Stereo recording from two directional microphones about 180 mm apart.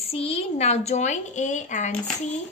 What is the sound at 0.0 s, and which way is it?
A child's voice, 35° left (ahead or behind).